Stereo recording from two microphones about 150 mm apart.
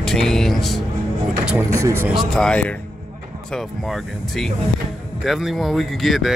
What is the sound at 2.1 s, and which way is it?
Speech, centre (ahead or behind).